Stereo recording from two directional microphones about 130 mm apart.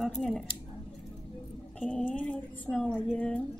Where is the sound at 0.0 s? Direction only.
Centre (ahead or behind).